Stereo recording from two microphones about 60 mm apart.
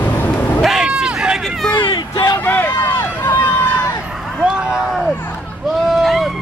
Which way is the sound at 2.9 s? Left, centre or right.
Left.